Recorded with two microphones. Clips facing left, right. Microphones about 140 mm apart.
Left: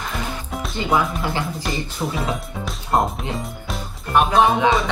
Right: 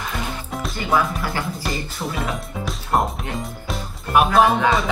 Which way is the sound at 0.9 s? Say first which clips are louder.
Even; 20° left (ahead or behind).